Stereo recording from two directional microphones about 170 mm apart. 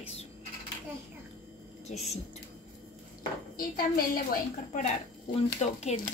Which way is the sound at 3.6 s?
55° left (ahead or behind).